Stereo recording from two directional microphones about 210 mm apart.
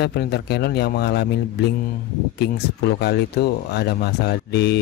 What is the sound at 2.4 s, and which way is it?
Speech, 50° left (ahead or behind).